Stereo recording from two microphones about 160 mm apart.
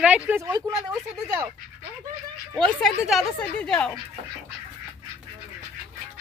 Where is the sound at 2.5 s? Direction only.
5° left (ahead or behind).